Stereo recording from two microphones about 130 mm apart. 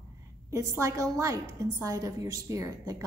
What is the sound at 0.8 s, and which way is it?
A woman's voice, 25° right (ahead or behind).